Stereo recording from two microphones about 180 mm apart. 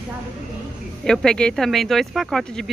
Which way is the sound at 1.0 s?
5° left (ahead or behind).